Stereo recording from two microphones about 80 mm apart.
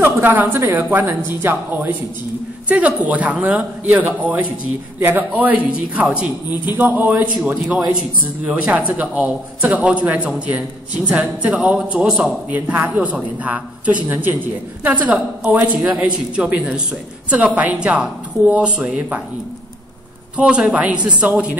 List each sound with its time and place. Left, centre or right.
0.0 s a man's voice: right
7.5 s a man's voice: centre
8.5 s a man's voice: centre
20.3 s a man's voice: centre